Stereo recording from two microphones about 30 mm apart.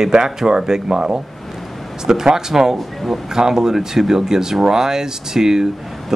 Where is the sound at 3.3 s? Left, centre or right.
Centre.